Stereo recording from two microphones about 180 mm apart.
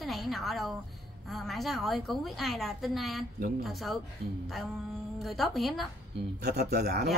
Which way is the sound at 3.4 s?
55° right (ahead or behind).